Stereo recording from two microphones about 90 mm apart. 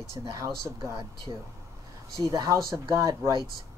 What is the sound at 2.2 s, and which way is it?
Speech, 40° right (ahead or behind).